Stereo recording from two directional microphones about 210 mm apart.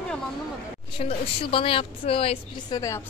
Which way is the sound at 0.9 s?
25° left (ahead or behind).